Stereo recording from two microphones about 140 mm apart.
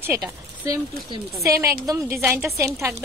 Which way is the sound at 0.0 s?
20° right (ahead or behind).